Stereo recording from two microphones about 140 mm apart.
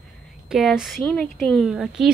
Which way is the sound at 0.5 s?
Centre (ahead or behind).